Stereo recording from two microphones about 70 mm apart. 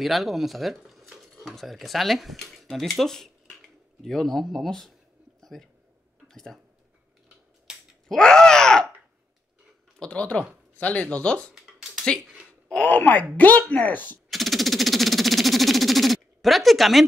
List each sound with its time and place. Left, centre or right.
0.0 s speech: centre
5.4 s a sound: centre
6.2 s speech: centre
7.7 s a sound: centre
8.1 s groan: centre
9.9 s speech: centre
12.2 s a sound: centre
12.6 s speech: left
14.3 s music: centre